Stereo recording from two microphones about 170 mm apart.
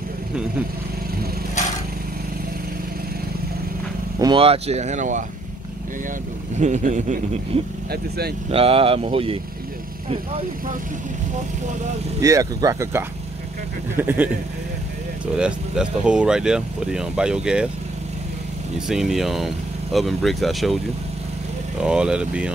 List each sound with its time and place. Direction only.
4.2 s speech: 30° right (ahead or behind)
6.6 s a man's voice: 45° right (ahead or behind)
12.2 s speech: 20° right (ahead or behind)
15.3 s speech: 5° right (ahead or behind)
18.9 s speech: centre (ahead or behind)
21.8 s speech: 5° right (ahead or behind)